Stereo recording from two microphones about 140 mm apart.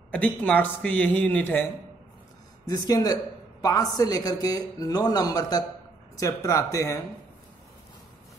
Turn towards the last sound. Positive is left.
turn(degrees=25)  # may be behind; listen again after turning